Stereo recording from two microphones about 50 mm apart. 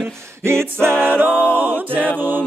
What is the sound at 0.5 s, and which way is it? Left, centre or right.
A capella, right.